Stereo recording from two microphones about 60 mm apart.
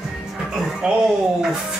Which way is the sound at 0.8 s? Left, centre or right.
Centre.